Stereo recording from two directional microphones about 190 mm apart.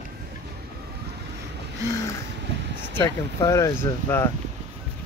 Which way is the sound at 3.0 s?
15° left (ahead or behind).